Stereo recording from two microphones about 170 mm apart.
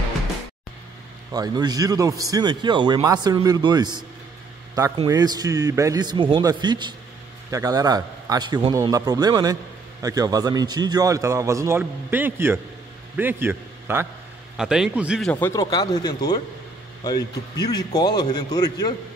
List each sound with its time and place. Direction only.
1.3 s a man's voice: 25° right (ahead or behind); by 15.3 s 5° right (ahead or behind)
15.4 s a man's voice: 20° left (ahead or behind)